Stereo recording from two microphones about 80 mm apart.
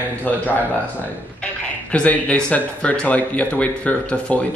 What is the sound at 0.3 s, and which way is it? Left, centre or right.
Speech, centre.